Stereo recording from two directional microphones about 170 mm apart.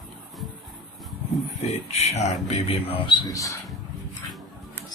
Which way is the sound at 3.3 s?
20° left (ahead or behind).